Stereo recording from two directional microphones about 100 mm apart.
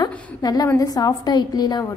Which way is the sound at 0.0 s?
40° left (ahead or behind).